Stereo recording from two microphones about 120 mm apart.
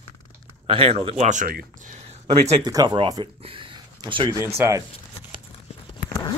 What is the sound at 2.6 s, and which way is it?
Speech, 30° right (ahead or behind).